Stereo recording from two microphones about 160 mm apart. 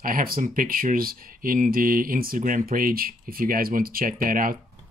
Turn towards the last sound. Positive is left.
turn(degrees=-60)  # may be behind; listen again after turning